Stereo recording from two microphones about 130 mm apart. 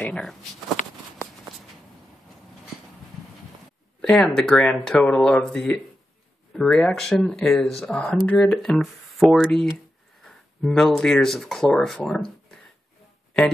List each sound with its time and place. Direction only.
0.0 s speech: 5° left (ahead or behind)
0.8 s a sound: 70° left (ahead or behind)
4.0 s speech: 5° left (ahead or behind)